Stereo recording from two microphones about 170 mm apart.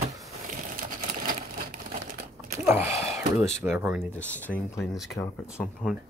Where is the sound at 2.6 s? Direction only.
15° right (ahead or behind).